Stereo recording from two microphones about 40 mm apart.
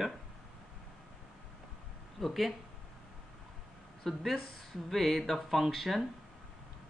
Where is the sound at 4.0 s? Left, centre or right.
Centre.